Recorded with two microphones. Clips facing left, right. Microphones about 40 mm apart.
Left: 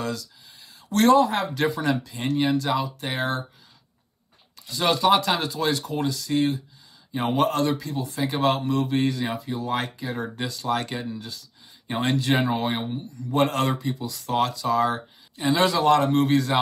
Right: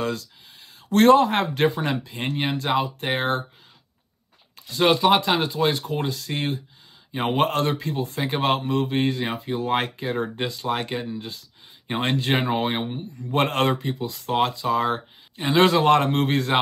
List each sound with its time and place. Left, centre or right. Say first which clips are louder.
0.0 s speech: right 3 dB; right
4.6 s speech: right 4 dB; right
5.0 s speech: right 1 dB; centre
12.0 s speech: left 1 dB; right
13.2 s speech: right 1 dB; right